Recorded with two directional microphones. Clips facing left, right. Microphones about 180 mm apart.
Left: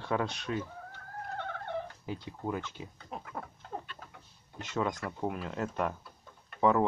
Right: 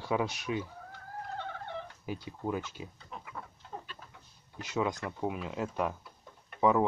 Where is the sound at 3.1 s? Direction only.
50° left (ahead or behind).